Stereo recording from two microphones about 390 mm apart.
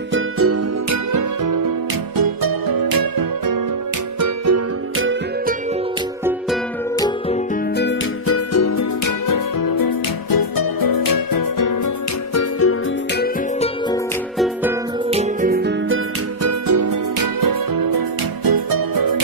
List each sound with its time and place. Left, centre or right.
0.1 s music: right
4.2 s music: right
7.7 s music: left
8.5 s music: left
12.4 s music: left
15.0 s music: centre
16.4 s music: right